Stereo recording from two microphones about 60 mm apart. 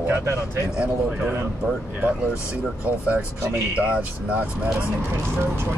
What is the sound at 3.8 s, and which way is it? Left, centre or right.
Speech, right.